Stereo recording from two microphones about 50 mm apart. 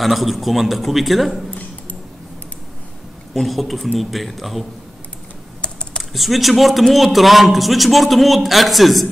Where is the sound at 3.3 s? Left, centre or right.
Centre.